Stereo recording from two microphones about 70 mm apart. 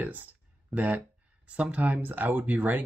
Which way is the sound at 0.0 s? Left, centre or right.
Right.